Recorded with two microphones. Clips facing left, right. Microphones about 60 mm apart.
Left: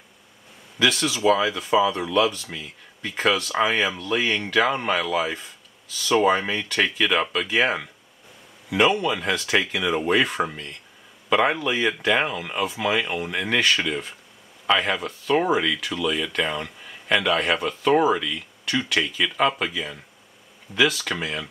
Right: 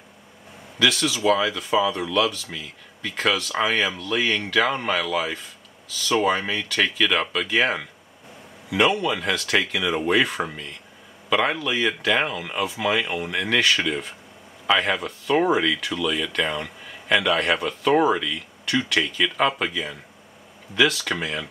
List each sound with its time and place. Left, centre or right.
0.7 s speech: centre